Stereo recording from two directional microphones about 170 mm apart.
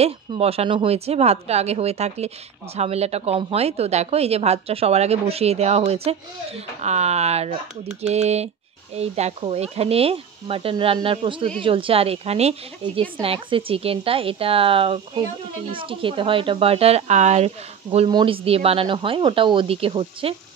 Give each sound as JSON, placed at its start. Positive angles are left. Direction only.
{"t": 0.0, "sound": "speech", "side_deg": -35}